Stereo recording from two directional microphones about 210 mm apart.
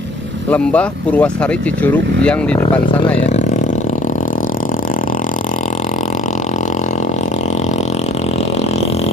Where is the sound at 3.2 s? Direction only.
30° left (ahead or behind).